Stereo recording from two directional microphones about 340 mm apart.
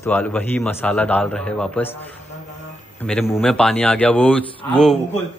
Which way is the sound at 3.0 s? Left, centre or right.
Centre.